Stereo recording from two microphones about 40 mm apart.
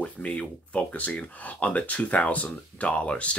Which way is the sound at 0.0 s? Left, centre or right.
Left.